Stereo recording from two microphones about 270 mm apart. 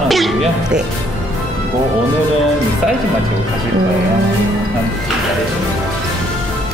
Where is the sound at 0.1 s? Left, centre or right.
Centre.